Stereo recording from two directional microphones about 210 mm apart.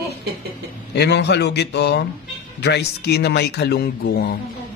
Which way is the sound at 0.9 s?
50° left (ahead or behind).